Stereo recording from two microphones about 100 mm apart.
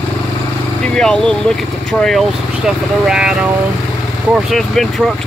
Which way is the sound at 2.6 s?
5° right (ahead or behind).